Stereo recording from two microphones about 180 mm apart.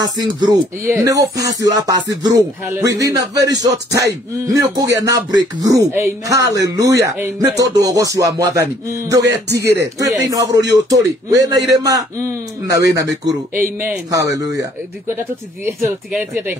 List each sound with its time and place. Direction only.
0.0 s speech: 25° right (ahead or behind)
1.3 s music: 70° right (ahead or behind)
1.9 s speech: 20° right (ahead or behind)